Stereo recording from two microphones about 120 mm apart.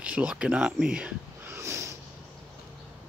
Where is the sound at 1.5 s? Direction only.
20° right (ahead or behind).